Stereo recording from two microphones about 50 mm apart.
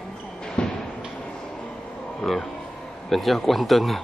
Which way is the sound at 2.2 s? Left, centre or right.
Centre.